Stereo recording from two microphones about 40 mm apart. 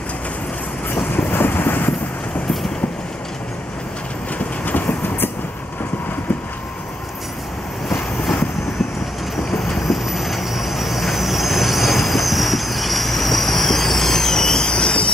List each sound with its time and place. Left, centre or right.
1.1 s vehicle: left
4.6 s train: left
7.9 s vehicle: centre
9.8 s vehicle: centre